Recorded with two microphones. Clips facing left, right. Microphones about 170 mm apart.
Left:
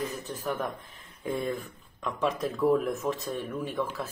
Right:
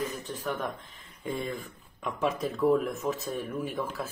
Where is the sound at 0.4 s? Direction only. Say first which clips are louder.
Left 1 dB; centre (ahead or behind).